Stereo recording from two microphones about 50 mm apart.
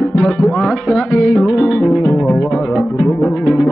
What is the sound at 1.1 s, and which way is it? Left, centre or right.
Music, left.